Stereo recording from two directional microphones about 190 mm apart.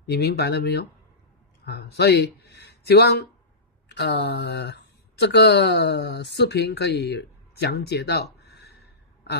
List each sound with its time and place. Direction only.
0.0 s speech: 60° left (ahead or behind)